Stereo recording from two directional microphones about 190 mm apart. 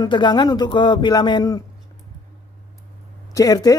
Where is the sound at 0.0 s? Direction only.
25° left (ahead or behind).